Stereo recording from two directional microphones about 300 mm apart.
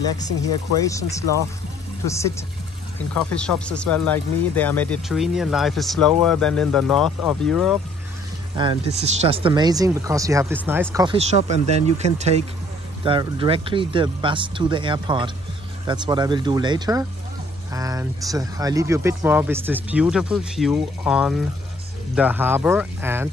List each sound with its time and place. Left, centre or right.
0.8 s speech: centre
8.5 s speech: centre